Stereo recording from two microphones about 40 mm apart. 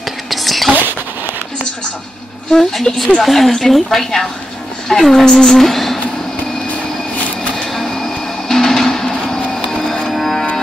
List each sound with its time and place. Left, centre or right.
0.3 s whispering: centre
2.9 s speech: left
3.2 s a woman's voice: centre
7.7 s music: centre
10.0 s music: centre